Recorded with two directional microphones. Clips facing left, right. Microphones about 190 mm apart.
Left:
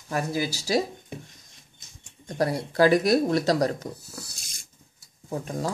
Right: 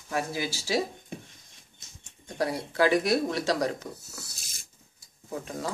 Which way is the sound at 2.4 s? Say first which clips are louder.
Left 4 dB; 40° left (ahead or behind).